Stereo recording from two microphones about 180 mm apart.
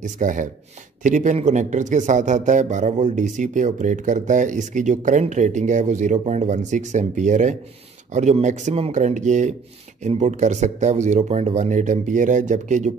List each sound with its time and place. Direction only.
0.0 s a man's voice: 45° right (ahead or behind)